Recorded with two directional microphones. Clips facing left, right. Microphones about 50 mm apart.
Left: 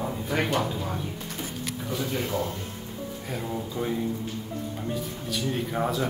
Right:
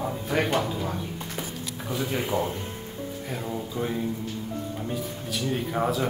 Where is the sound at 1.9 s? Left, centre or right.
Centre.